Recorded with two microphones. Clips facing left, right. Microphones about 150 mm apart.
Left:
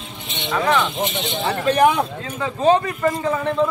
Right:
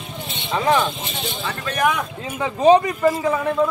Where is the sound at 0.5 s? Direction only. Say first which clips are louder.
Right 1 dB; 25° right (ahead or behind).